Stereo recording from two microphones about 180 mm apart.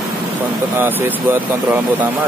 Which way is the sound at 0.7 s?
10° right (ahead or behind).